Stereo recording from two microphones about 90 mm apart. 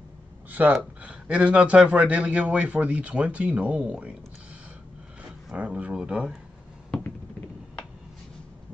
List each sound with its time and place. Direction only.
0.5 s a man's voice: 20° right (ahead or behind)
5.6 s a man's voice: 15° right (ahead or behind)